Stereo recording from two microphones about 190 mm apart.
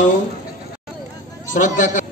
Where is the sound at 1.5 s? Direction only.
40° left (ahead or behind).